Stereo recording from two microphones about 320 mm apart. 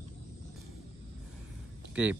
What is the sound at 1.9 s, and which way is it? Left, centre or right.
Speech, centre.